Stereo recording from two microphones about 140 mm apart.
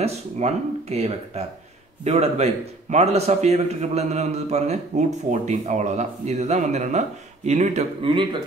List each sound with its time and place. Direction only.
0.0 s a man's voice: 50° right (ahead or behind)
8.0 s speech: 35° right (ahead or behind)